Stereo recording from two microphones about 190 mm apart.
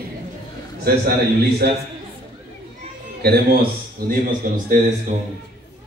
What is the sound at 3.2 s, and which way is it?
Speech, 55° right (ahead or behind).